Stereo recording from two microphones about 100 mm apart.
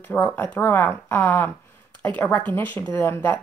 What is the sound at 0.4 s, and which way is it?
Speech, 20° left (ahead or behind).